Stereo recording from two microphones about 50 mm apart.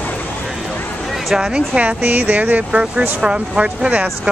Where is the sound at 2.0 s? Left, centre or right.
Right.